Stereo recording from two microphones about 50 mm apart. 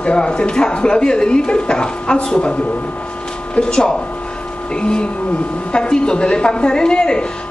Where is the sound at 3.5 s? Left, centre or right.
Centre.